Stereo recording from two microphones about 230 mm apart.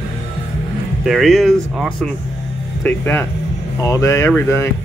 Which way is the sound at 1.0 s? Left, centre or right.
Centre.